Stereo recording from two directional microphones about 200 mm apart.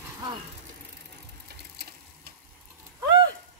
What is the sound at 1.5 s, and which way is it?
Sewing machine, 50° right (ahead or behind).